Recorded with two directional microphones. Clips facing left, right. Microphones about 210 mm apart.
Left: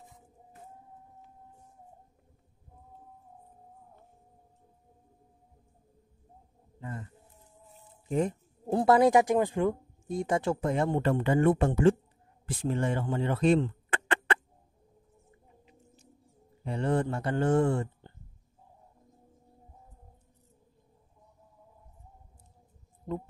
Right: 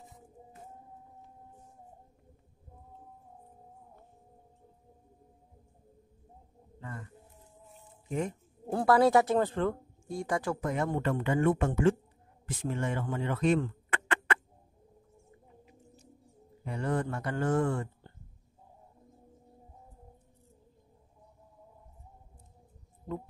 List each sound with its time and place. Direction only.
6.8 s music: 25° left (ahead or behind)
8.6 s speech: 20° left (ahead or behind)
16.6 s speech: 30° left (ahead or behind)